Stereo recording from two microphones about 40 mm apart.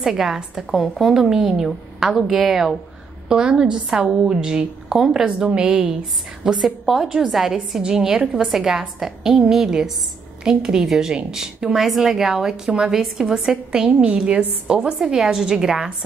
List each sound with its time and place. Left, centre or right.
0.0 s speech: centre
0.7 s speech: centre
1.0 s speech: centre
3.3 s a woman's voice: centre
5.2 s a woman's voice: right; by 7.5 s centre
7.8 s speech: centre
8.2 s a woman's voice: right
8.5 s speech: centre
14.0 s a woman's voice: right
14.7 s speech: centre